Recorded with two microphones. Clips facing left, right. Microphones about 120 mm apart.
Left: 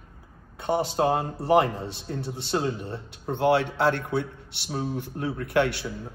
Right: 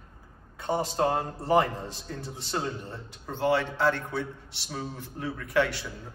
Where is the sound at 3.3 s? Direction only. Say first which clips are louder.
Left 4 dB; 65° left (ahead or behind).